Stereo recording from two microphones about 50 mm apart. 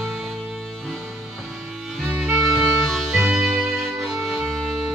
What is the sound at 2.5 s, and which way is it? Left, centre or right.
Music, centre.